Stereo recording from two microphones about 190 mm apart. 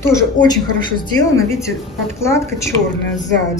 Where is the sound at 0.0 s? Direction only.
15° left (ahead or behind).